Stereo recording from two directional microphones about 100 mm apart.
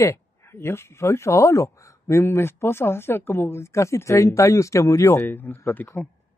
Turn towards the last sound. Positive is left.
turn(degrees=20)  # may be behind; listen again after turning